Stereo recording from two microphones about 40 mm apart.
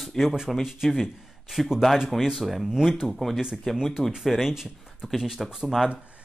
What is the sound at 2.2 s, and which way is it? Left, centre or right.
Speech, centre.